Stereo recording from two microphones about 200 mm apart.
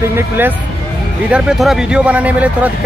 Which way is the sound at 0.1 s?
10° right (ahead or behind).